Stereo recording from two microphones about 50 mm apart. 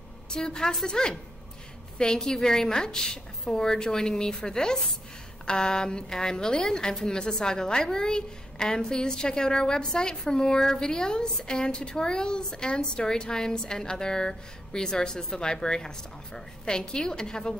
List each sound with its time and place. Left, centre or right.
0.3 s a woman's voice: centre